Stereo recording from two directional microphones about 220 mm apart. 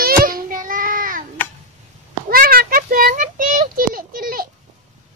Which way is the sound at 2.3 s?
40° right (ahead or behind).